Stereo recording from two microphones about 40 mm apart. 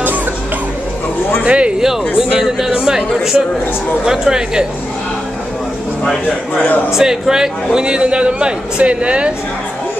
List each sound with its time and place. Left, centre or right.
1.4 s speech: right
2.1 s speech: centre
7.0 s a man's voice: centre; by 9.3 s right